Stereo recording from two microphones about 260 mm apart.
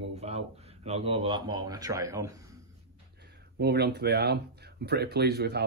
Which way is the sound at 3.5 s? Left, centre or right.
Right.